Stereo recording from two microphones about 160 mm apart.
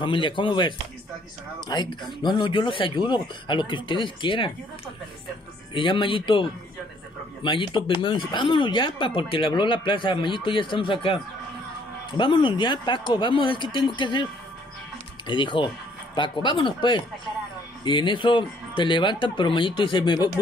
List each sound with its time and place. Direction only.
0.0 s speech: 30° left (ahead or behind)
5.8 s speech: 30° left (ahead or behind)
7.4 s speech: 30° left (ahead or behind)
15.2 s speech: 30° left (ahead or behind)